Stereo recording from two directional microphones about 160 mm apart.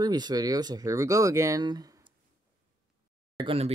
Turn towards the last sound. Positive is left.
turn(degrees=-35)  # may be behind; listen again after turning